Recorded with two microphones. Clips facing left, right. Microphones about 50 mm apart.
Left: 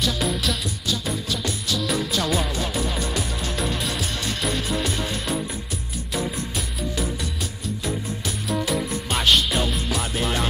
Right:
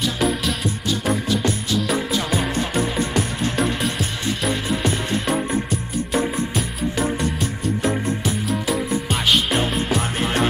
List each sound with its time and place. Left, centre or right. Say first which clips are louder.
0.2 s music: right 4 dB; centre
0.8 s music: right 6 dB; right
2.8 s music: right 5 dB; right
4.3 s music: right 4 dB; centre
8.5 s music: even; centre